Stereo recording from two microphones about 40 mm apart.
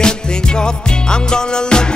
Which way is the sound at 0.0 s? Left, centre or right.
Left.